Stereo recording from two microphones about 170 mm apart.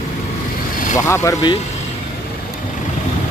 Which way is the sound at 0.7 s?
50° left (ahead or behind).